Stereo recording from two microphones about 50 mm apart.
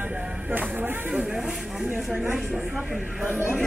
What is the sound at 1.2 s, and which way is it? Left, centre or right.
Speech, centre.